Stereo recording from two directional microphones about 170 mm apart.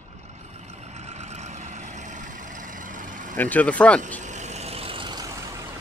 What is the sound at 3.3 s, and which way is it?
Speech, 10° left (ahead or behind).